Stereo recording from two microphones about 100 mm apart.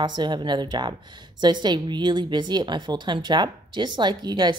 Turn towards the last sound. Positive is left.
turn(degrees=-45)  # may be behind; listen again after turning